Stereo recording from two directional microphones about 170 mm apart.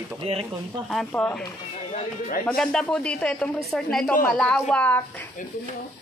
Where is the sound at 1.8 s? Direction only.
45° left (ahead or behind).